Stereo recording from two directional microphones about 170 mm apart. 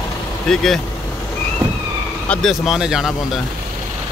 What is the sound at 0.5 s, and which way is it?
Speech, 5° left (ahead or behind).